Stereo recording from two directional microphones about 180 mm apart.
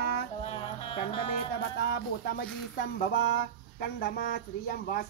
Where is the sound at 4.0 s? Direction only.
55° left (ahead or behind).